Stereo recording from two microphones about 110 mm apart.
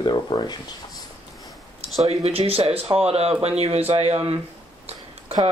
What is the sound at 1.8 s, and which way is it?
Speech, 65° right (ahead or behind).